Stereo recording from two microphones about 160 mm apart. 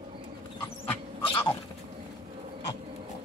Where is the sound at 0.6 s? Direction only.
15° left (ahead or behind).